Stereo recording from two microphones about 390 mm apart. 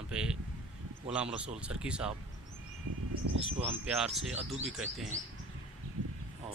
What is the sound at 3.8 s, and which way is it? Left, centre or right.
Speech, centre.